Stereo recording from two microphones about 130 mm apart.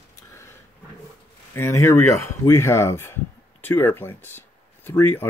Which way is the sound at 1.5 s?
20° left (ahead or behind).